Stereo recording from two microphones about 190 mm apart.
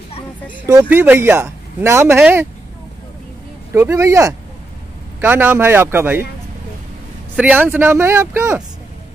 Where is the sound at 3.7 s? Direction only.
15° right (ahead or behind).